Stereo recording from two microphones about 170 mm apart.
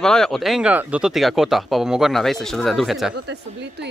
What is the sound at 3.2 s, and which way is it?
Speech, 85° right.